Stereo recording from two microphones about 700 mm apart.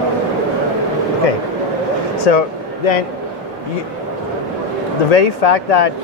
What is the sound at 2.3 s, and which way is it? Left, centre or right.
Speech, left.